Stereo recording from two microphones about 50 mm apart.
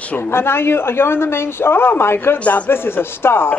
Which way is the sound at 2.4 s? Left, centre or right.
Left.